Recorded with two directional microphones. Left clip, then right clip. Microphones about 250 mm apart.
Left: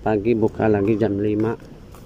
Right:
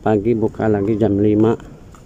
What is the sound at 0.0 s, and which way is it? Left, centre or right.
Speech, centre.